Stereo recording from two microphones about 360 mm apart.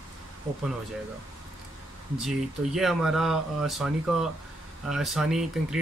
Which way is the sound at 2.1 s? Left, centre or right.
Centre.